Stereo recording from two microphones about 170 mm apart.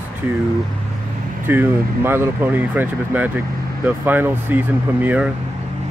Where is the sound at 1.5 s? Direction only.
10° right (ahead or behind).